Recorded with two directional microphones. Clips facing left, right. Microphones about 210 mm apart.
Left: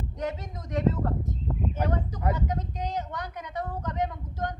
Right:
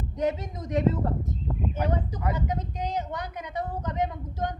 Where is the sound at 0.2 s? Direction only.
20° right (ahead or behind).